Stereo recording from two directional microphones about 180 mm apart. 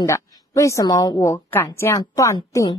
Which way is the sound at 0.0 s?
20° left (ahead or behind).